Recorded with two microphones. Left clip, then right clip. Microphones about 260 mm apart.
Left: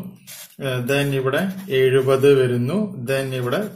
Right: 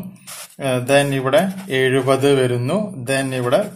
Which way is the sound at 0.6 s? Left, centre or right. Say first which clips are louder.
Right 6 dB; right.